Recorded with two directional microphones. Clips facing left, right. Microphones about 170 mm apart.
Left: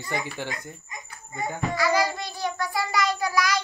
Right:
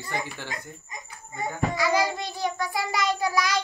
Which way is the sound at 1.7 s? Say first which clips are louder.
Left 2 dB; 20° right (ahead or behind).